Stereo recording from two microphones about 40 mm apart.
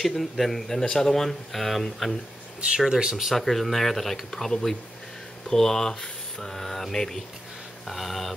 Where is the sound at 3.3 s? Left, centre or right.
Centre.